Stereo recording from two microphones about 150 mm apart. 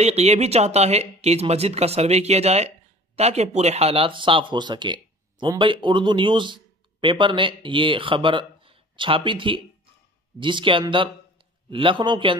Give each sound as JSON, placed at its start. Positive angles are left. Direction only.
{"t": 0.0, "sound": "speech", "side_deg": -45}